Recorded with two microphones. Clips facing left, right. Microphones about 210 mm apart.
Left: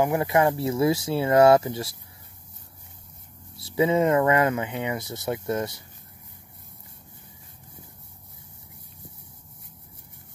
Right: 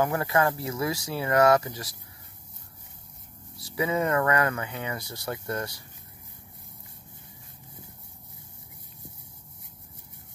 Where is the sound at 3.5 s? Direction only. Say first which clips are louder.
Left 6 dB; 25° left (ahead or behind).